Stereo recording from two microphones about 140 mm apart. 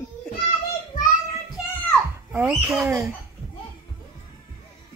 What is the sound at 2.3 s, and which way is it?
Speech, 10° right (ahead or behind).